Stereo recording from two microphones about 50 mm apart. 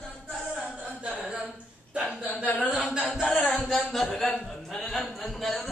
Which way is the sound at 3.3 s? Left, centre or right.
Left.